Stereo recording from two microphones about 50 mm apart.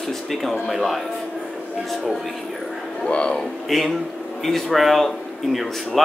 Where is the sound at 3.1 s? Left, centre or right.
Left.